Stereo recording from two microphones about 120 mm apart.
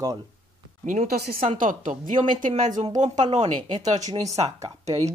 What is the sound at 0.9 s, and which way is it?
Speech, 85° right.